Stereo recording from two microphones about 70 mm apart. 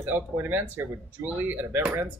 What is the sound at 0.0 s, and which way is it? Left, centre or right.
A woman's voice, right.